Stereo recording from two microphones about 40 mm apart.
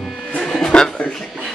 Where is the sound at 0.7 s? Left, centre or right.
Centre.